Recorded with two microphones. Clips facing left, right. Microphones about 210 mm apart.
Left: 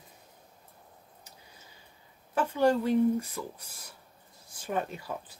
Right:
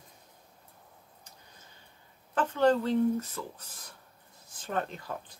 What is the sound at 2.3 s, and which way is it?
Speech, 10° left (ahead or behind).